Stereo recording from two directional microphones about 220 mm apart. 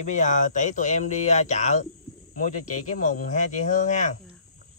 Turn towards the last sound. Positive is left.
turn(degrees=35)  # may be behind; listen again after turning